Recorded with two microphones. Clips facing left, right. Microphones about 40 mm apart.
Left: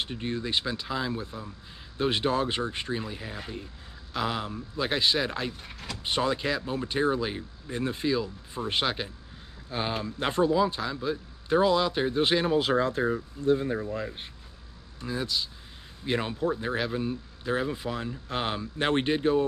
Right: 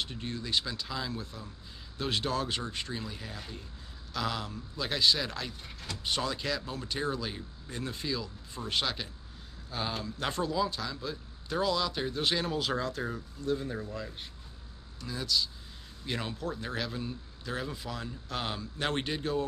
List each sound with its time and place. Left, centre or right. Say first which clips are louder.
0.0 s a man's voice: left 5 dB; left